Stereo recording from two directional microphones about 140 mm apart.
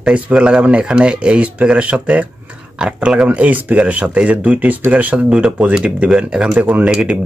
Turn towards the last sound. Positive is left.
turn(degrees=-10)  # may be behind; listen again after turning